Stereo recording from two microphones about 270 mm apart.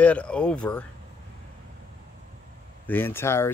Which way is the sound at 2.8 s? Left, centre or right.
Centre.